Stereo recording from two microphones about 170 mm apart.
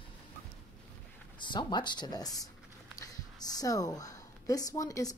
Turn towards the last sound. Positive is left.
turn(degrees=20)  # may be behind; listen again after turning